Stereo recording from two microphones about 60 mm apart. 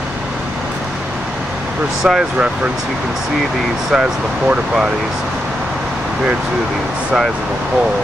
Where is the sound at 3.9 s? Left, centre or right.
Centre.